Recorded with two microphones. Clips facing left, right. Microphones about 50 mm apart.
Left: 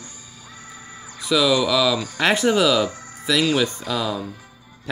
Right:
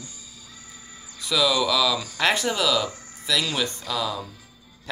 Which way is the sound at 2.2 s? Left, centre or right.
Centre.